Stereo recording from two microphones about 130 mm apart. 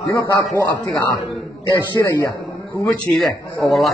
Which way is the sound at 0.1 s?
30° left (ahead or behind).